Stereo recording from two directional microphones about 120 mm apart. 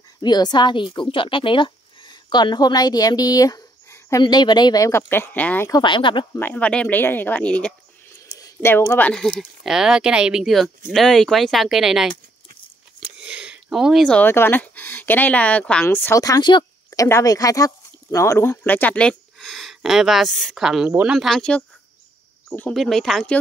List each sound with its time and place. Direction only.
0.2 s a woman's voice: 35° left (ahead or behind)
4.2 s speech: 40° left (ahead or behind); by 5.7 s 15° left (ahead or behind)
5.7 s a woman's voice: 40° left (ahead or behind)
6.3 s speech: 15° left (ahead or behind)
8.3 s a sound: 30° left (ahead or behind)
8.9 s speech: 10° left (ahead or behind)
9.2 s speech: 5° right (ahead or behind)
13.0 s a sound: 10° right (ahead or behind)
14.0 s speech: 10° left (ahead or behind)
16.2 s speech: 35° left (ahead or behind); by 23.3 s 5° left (ahead or behind)